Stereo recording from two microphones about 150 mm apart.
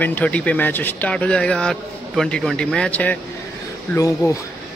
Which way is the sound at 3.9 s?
20° left (ahead or behind).